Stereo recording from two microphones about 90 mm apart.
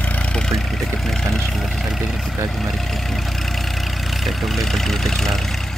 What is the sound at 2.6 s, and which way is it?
Vehicle, centre (ahead or behind).